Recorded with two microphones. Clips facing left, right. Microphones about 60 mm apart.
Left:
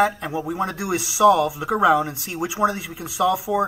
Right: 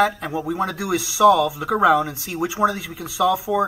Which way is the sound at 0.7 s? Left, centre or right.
Left.